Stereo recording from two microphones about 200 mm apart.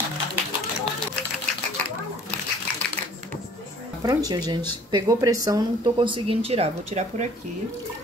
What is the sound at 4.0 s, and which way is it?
Speech, 20° right (ahead or behind).